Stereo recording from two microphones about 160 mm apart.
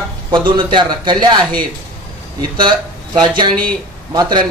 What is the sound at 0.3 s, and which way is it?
Speech, 30° right (ahead or behind).